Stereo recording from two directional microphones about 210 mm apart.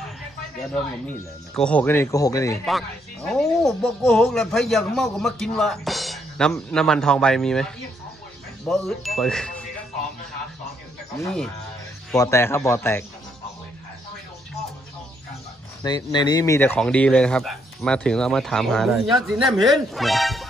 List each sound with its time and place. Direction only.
1.5 s speech: 5° left (ahead or behind)
3.3 s speech: centre (ahead or behind)
12.2 s speech: 15° left (ahead or behind)
15.8 s speech: 20° left (ahead or behind); by 20.4 s centre (ahead or behind)